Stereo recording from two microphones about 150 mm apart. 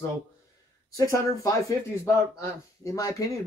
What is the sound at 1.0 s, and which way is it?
Speech, 20° left (ahead or behind).